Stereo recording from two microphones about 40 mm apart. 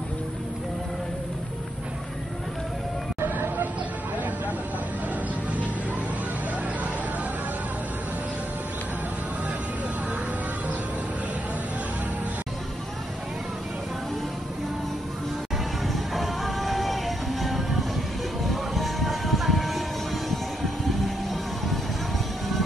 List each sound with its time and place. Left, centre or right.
3.2 s vehicle: right
15.9 s music: centre